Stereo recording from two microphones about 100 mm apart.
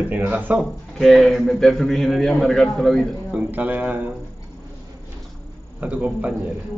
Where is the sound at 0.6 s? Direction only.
Centre (ahead or behind).